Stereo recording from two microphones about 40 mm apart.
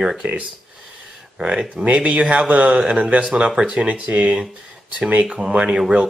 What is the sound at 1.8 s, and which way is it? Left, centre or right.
Speech, right.